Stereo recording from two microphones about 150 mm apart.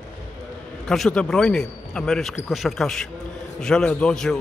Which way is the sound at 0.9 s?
5° left (ahead or behind).